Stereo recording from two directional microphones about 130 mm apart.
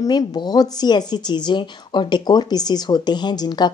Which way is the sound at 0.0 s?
30° left (ahead or behind).